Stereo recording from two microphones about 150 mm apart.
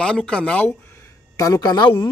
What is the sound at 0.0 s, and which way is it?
Speech, 5° left (ahead or behind).